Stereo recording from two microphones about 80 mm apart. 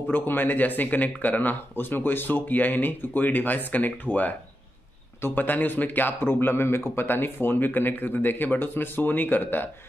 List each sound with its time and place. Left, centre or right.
0.1 s a man's voice: left